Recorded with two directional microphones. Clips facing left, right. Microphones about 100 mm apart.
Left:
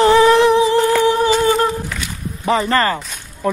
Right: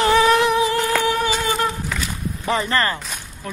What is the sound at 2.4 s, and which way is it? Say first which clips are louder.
Speech: left 5 dB; 30° left (ahead or behind).